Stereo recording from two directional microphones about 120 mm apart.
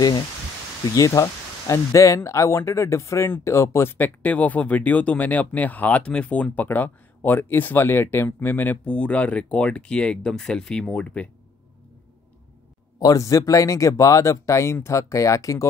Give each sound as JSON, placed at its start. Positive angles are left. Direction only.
{"t": 0.9, "sound": "speech", "side_deg": 25}
{"t": 13.0, "sound": "speech", "side_deg": 30}